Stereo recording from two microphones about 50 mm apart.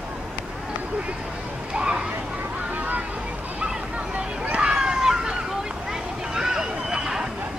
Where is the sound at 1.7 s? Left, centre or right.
Centre.